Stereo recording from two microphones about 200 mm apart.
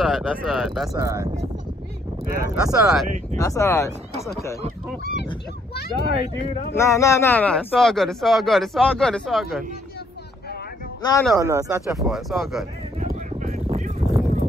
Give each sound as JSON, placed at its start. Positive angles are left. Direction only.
{"t": 0.0, "sound": "speech", "side_deg": 0}
{"t": 0.9, "sound": "speech", "side_deg": -15}
{"t": 2.3, "sound": "speech", "side_deg": -15}
{"t": 3.3, "sound": "speech", "side_deg": 15}
{"t": 6.7, "sound": "speech", "side_deg": 15}
{"t": 11.0, "sound": "speech", "side_deg": 20}
{"t": 11.3, "sound": "speech", "side_deg": -15}
{"t": 12.0, "sound": "speech", "side_deg": 0}
{"t": 13.0, "sound": "a sound", "side_deg": -35}